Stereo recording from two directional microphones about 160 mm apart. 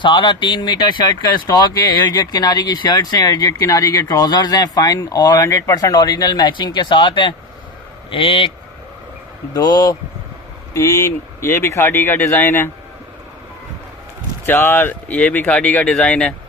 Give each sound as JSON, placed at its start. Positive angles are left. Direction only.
{"t": 0.0, "sound": "speech", "side_deg": 30}
{"t": 14.4, "sound": "speech", "side_deg": 15}